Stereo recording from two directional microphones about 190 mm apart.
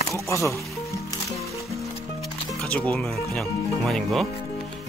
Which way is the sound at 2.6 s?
5° left (ahead or behind).